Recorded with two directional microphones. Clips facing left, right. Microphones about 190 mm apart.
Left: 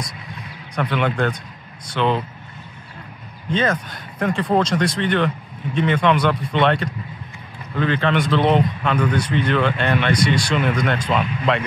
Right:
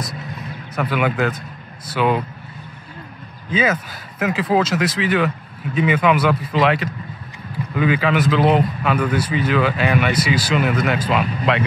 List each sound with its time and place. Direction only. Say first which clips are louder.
0.7 s a man's voice: right 1 dB; 5° right (ahead or behind)
3.4 s a man's voice: right 1 dB; 5° right (ahead or behind)